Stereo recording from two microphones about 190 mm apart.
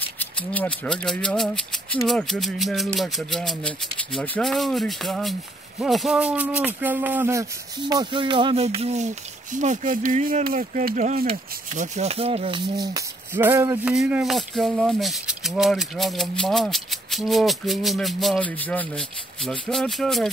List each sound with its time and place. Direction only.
0.2 s speech: 10° left (ahead or behind)